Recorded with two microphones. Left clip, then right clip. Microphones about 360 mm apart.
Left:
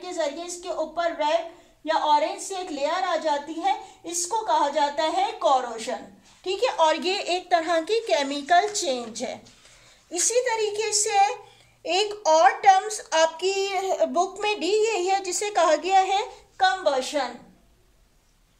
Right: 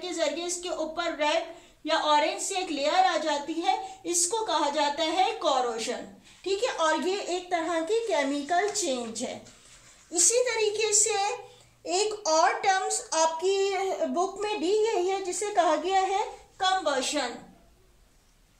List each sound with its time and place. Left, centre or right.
0.0 s a woman's voice: centre
1.9 s child singing: centre